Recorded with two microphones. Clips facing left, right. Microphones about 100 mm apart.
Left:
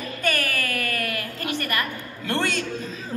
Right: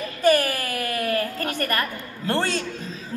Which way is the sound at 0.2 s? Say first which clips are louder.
Right 7 dB; 35° right (ahead or behind).